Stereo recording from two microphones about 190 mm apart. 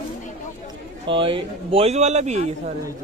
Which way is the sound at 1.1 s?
25° right (ahead or behind).